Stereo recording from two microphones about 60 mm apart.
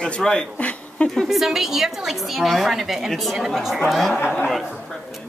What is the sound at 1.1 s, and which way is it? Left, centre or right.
A woman's voice, centre.